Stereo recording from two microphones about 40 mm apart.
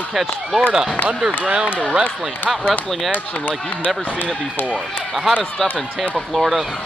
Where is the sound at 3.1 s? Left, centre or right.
Left.